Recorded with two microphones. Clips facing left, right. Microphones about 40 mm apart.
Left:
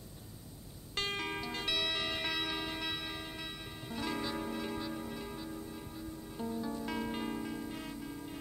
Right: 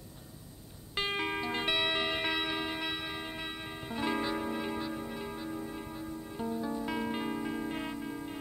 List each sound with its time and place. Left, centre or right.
0.9 s music: centre